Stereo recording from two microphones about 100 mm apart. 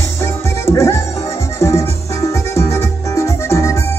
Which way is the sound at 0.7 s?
25° left (ahead or behind).